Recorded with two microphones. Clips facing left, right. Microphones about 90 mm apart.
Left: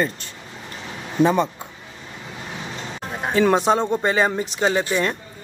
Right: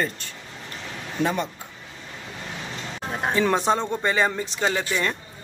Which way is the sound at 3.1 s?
Centre (ahead or behind).